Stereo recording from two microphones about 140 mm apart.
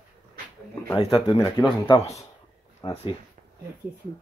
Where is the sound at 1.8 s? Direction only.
45° left (ahead or behind).